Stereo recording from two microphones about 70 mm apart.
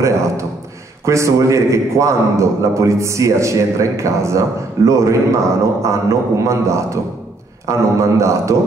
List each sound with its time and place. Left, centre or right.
1.0 s a man's voice: right